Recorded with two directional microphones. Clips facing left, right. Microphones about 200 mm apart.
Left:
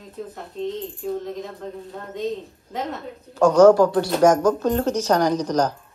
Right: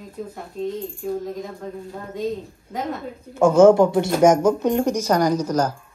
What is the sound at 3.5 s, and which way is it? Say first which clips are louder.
Speech: even; 25° right (ahead or behind).